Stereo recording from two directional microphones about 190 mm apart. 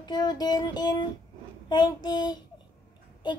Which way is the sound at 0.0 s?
20° left (ahead or behind).